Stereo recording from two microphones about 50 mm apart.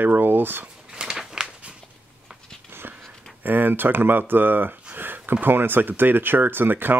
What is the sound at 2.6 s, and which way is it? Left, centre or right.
Dog, right.